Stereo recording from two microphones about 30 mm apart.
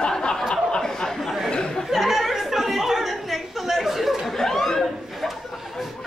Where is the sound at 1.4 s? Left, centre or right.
Left.